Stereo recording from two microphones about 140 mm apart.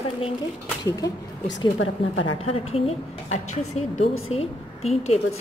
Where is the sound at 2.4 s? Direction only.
45° left (ahead or behind).